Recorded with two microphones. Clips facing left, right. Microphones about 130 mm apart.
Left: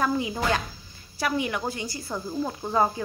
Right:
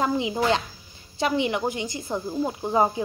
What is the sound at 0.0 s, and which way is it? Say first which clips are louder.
Speech: right 2 dB; 20° right (ahead or behind).